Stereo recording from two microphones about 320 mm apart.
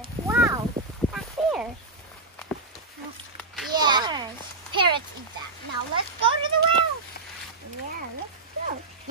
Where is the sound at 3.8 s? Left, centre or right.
Centre.